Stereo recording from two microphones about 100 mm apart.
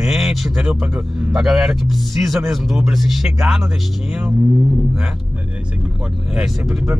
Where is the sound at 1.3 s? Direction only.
5° right (ahead or behind).